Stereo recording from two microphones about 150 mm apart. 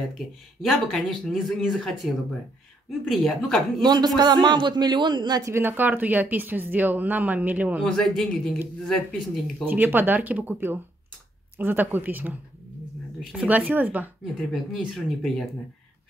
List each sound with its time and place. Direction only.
0.6 s speech: centre (ahead or behind)
3.8 s speech: 30° right (ahead or behind); by 7.8 s 10° right (ahead or behind)
7.8 s speech: 5° left (ahead or behind)
9.7 s speech: 15° right (ahead or behind)
13.5 s speech: 10° right (ahead or behind)
14.2 s speech: centre (ahead or behind)